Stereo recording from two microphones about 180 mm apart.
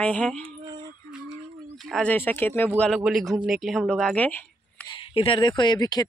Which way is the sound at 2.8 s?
Centre (ahead or behind).